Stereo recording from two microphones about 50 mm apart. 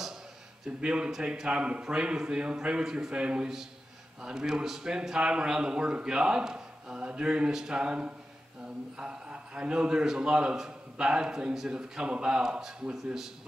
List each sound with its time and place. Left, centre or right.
0.7 s a man's voice: centre